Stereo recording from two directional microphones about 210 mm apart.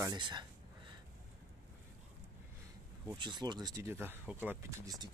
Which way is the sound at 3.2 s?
20° right (ahead or behind).